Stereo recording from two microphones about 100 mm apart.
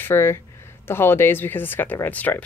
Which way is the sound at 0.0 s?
25° left (ahead or behind).